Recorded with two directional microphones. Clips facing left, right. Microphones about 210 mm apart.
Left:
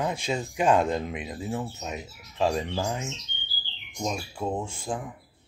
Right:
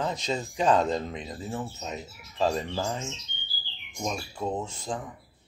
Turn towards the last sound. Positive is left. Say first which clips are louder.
# left 1 dB
turn(degrees=10)  # may be behind; listen again after turning